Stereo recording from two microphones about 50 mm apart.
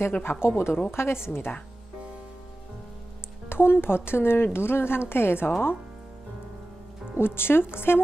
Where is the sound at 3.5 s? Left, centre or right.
Left.